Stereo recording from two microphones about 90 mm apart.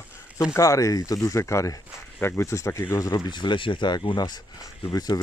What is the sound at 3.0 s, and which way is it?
Speech, 40° left (ahead or behind).